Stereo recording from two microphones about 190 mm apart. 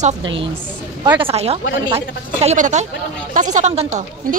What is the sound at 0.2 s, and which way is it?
A woman's voice, 25° right (ahead or behind).